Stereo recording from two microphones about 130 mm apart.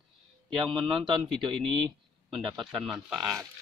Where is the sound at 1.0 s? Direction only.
35° right (ahead or behind).